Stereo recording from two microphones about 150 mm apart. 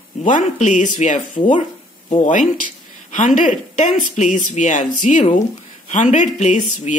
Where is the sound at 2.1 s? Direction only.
60° left (ahead or behind).